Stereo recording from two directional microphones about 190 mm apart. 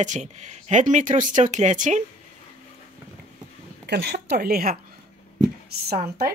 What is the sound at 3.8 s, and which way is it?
A woman's voice, 55° right (ahead or behind).